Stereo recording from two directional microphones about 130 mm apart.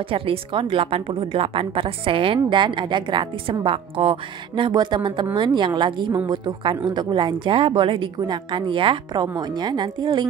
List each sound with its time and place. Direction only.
0.1 s a woman's voice: 40° right (ahead or behind)